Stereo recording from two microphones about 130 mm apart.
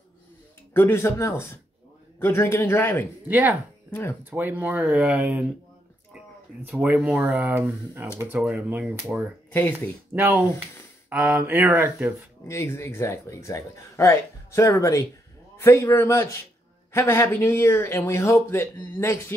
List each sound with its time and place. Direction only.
0.7 s a man's voice: 20° left (ahead or behind)
3.3 s speech: 10° right (ahead or behind)
3.9 s a man's voice: 15° left (ahead or behind)
4.2 s speech: 15° right (ahead or behind)
6.1 s a sound: 10° right (ahead or behind)
7.2 s speech: 15° right (ahead or behind)
9.5 s speech: 15° left (ahead or behind)
10.1 s speech: 10° right (ahead or behind)
12.4 s speech: 20° left (ahead or behind)